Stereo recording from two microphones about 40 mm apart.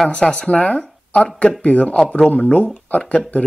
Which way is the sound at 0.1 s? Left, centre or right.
Left.